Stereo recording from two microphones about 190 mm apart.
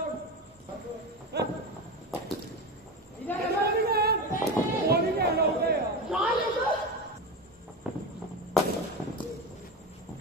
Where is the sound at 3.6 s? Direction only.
55° right (ahead or behind).